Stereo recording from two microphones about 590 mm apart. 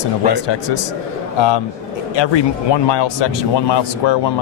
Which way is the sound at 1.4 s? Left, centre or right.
Left.